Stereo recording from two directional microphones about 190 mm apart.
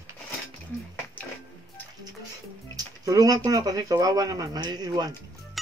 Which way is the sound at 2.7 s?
20° right (ahead or behind).